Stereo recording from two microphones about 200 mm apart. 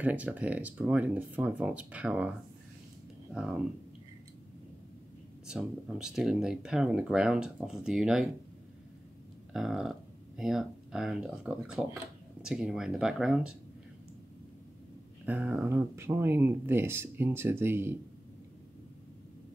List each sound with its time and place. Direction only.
0.0 s speech: 5° right (ahead or behind)
3.3 s speech: 5° right (ahead or behind)
5.5 s speech: 5° right (ahead or behind)
9.5 s speech: centre (ahead or behind)
15.2 s speech: 10° right (ahead or behind)